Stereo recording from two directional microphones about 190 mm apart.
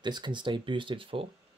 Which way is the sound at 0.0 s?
25° right (ahead or behind).